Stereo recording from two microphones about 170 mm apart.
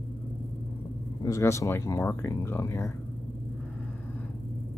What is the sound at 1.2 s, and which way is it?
Speech, 15° left (ahead or behind).